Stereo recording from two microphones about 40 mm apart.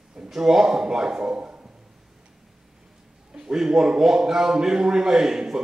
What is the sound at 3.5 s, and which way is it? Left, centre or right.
Speech, centre.